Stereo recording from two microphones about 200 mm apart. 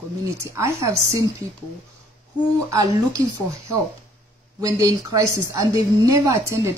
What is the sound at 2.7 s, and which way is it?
Speech, 20° right (ahead or behind).